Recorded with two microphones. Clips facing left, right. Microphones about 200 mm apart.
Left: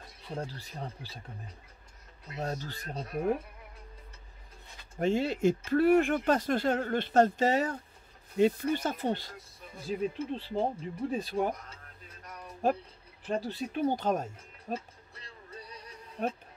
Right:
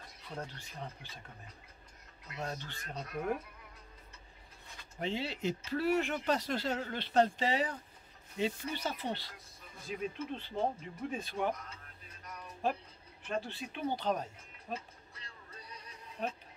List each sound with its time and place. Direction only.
0.3 s speech: 30° left (ahead or behind)
2.2 s speech: 30° left (ahead or behind)
4.9 s speech: 50° left (ahead or behind)
9.8 s speech: 30° left (ahead or behind)
12.6 s speech: 45° left (ahead or behind)